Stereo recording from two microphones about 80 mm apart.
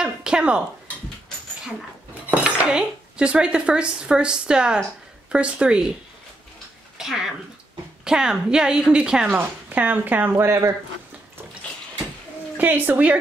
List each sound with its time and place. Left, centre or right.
0.0 s speech: centre
2.3 s a woman's voice: centre
7.0 s a sound: centre
8.0 s a woman's voice: centre
9.3 s speech: right
10.3 s speech: right
12.5 s speech: right